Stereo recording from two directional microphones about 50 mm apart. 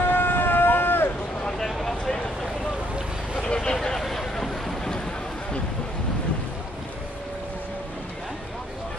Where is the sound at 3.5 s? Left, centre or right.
Centre.